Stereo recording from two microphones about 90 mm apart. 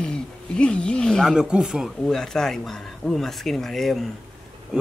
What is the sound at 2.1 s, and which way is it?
A man's voice, 5° left (ahead or behind).